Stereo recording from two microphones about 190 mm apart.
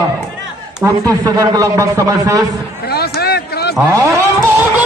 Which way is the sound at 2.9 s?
55° left (ahead or behind).